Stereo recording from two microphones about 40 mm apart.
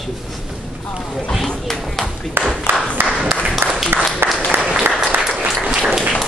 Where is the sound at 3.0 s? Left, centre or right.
Right.